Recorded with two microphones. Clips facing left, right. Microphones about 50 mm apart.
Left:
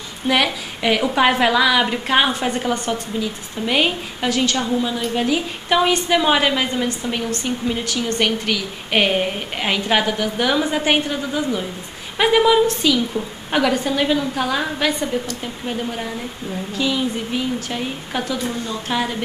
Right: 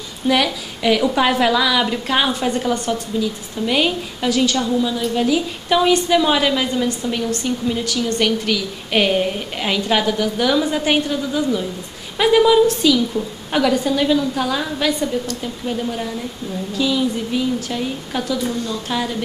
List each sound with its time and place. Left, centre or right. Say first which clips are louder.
0.3 s a woman's voice: right 1 dB; centre